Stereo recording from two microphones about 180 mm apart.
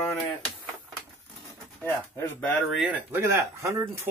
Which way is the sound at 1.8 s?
10° left (ahead or behind).